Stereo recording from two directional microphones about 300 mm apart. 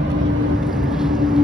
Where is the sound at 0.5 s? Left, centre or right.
Centre.